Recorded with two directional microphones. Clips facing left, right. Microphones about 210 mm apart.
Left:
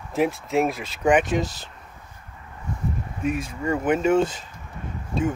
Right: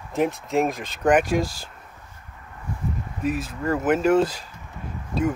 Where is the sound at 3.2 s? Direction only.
5° right (ahead or behind).